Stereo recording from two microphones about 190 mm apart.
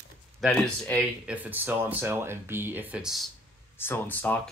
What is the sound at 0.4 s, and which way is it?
Speech, 5° left (ahead or behind).